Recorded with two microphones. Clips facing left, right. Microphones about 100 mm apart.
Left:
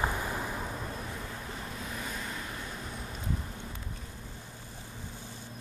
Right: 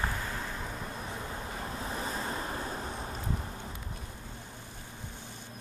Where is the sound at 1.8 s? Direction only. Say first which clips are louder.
Right 5 dB; 30° right (ahead or behind).